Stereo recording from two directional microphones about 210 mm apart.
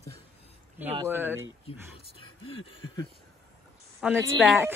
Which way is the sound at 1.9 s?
25° left (ahead or behind).